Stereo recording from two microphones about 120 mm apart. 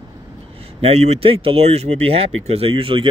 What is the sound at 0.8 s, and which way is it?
Speech, 60° right (ahead or behind).